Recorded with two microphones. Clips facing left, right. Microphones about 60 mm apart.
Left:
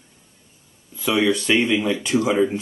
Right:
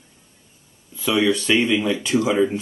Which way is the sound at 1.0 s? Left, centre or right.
Centre.